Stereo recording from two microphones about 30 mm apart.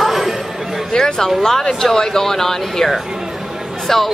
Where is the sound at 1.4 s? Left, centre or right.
Centre.